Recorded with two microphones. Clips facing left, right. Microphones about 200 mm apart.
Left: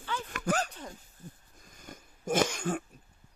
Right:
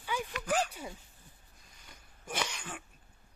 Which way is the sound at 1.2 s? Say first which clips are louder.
Left 10 dB; 45° left (ahead or behind).